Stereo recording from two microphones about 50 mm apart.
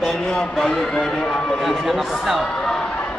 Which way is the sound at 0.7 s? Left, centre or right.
Centre.